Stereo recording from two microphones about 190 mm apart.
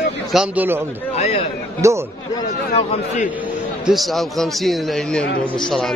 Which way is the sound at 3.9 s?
Centre (ahead or behind).